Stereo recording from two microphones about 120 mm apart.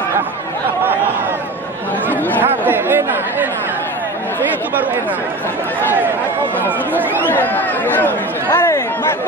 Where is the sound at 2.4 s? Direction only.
15° right (ahead or behind).